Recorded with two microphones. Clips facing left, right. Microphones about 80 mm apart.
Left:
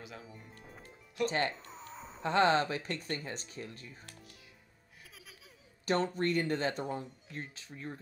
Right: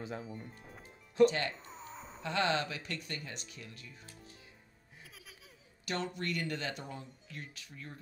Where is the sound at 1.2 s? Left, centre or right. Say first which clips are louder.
Right 5 dB; left.